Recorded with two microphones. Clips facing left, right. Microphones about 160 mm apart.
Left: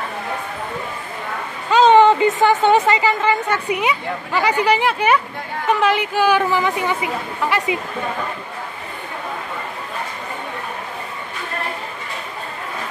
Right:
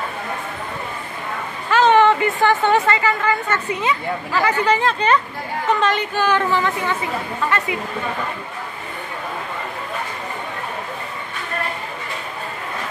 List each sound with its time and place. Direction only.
1.7 s a woman's voice: 20° left (ahead or behind)